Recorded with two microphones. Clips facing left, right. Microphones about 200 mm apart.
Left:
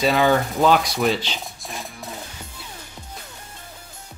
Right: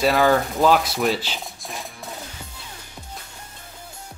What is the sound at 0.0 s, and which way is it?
Speech, centre (ahead or behind).